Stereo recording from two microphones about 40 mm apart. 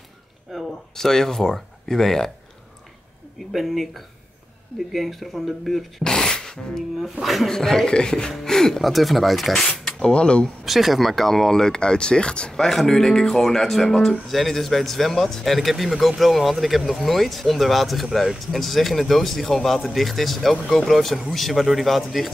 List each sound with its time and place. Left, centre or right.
0.5 s speech: centre
3.5 s speech: centre
6.0 s speech: centre
7.0 s speech: centre
7.4 s speech: centre
8.8 s speech: centre
9.9 s speech: left
10.6 s speech: centre; by 12.6 s left
12.6 s speech: centre